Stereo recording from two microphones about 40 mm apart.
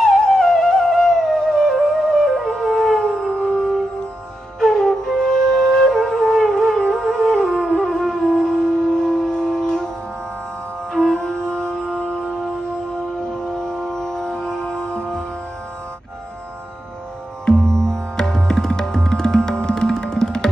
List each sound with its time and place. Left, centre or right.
0.0 s music: centre
2.3 s music: centre
4.6 s flute: centre
10.9 s music: centre
13.2 s music: centre
17.5 s music: centre